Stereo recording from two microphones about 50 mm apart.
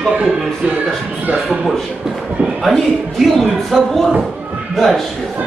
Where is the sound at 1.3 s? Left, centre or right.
Centre.